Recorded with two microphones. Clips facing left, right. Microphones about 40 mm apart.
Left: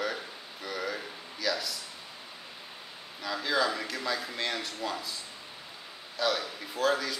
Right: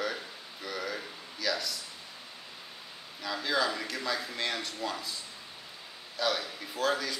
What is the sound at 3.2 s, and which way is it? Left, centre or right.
Speech, centre.